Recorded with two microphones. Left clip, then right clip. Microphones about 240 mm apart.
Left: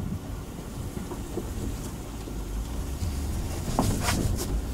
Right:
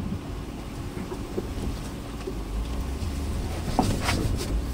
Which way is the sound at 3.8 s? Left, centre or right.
Left.